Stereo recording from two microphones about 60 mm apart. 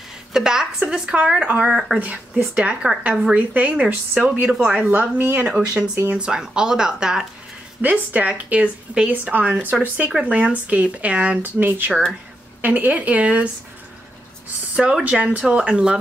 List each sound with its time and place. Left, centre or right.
0.3 s a woman's voice: centre
1.7 s speech: centre
2.0 s speech: right
3.7 s a woman's voice: centre
4.9 s a woman's voice: right; by 7.2 s centre
7.8 s speech: right
14.8 s a woman's voice: centre